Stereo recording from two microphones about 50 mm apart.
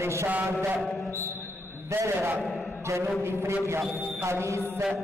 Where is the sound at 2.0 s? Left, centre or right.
Right.